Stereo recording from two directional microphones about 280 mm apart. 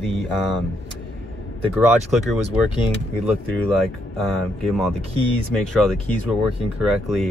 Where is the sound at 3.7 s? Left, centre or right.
Centre.